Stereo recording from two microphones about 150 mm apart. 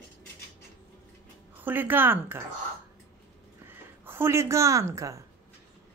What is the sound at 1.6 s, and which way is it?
Speech, 15° right (ahead or behind).